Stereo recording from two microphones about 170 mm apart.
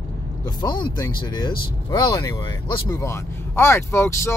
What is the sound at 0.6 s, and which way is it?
Speech, 25° left (ahead or behind).